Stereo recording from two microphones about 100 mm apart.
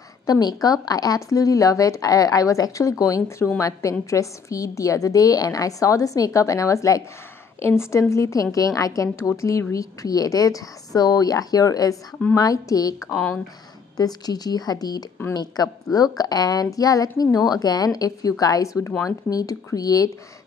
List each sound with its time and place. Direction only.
0.3 s a woman's voice: 40° left (ahead or behind)
13.1 s speech: 10° left (ahead or behind)
13.9 s a woman's voice: 40° left (ahead or behind)